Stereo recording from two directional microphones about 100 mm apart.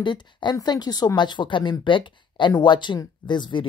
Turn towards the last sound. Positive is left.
turn(degrees=50)  # may be behind; listen again after turning